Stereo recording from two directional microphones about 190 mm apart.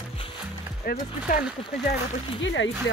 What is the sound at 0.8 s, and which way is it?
Speech, 50° left (ahead or behind).